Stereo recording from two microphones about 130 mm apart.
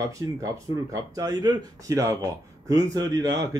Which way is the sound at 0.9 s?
30° right (ahead or behind).